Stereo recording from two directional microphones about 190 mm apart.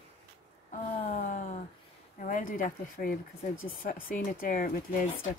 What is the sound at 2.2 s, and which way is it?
Speech, 45° left (ahead or behind).